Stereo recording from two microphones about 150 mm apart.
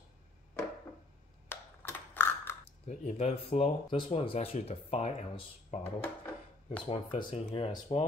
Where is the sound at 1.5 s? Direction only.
15° left (ahead or behind).